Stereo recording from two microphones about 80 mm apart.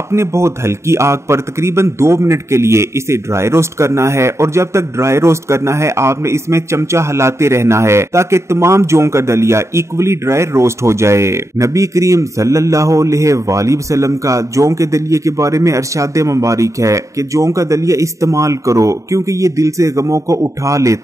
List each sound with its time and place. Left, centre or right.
0.1 s a man's voice: right